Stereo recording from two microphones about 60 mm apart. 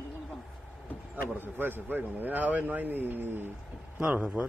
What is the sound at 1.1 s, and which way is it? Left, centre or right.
A man's voice, right.